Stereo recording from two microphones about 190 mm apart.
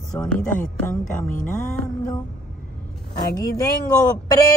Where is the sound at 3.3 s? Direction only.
20° left (ahead or behind).